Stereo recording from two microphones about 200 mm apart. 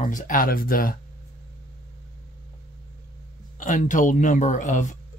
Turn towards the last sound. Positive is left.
turn(degrees=40)  # may be behind; listen again after turning